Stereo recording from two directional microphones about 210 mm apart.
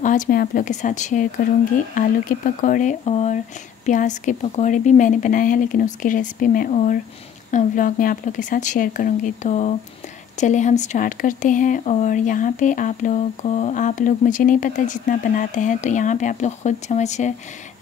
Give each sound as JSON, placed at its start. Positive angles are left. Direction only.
{"t": 0.0, "sound": "speech", "side_deg": 40}